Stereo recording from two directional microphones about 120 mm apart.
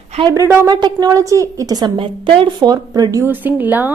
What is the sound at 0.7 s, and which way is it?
A woman's voice, 35° right (ahead or behind).